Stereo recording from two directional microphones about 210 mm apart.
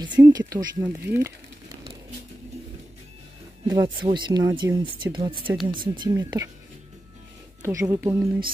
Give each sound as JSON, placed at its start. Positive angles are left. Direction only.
{"t": 0.0, "sound": "speech", "side_deg": -20}
{"t": 3.6, "sound": "speech", "side_deg": -20}
{"t": 7.6, "sound": "speech", "side_deg": -10}